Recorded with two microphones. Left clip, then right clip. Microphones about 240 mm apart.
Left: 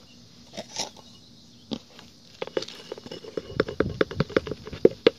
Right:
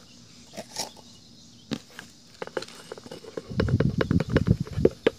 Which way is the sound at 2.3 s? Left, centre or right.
Centre.